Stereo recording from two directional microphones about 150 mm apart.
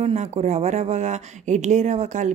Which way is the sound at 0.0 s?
50° right (ahead or behind).